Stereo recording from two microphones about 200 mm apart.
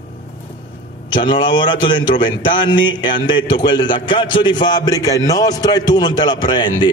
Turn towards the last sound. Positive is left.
turn(degrees=20)  # may be behind; listen again after turning